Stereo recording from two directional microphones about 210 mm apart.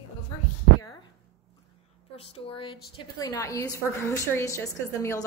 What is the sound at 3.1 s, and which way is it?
A woman's voice, 15° left (ahead or behind).